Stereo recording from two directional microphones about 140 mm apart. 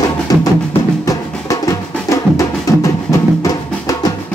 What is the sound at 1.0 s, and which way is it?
Music, 25° left (ahead or behind).